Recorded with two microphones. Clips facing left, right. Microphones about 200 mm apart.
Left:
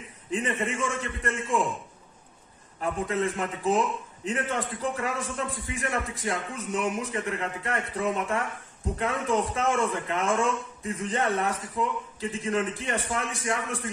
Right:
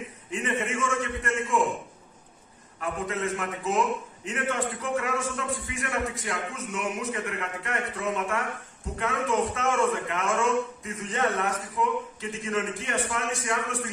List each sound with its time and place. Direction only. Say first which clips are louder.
0.3 s a man's voice: left 1 dB; 35° left (ahead or behind)
2.8 s a man's voice: left 2 dB; 30° left (ahead or behind)